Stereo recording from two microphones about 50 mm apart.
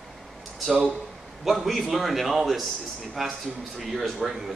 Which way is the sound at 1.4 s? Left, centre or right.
Centre.